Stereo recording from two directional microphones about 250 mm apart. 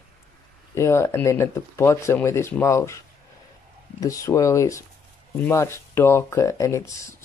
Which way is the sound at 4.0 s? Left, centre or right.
Centre.